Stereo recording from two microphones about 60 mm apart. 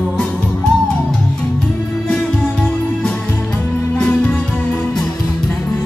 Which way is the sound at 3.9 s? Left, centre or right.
Left.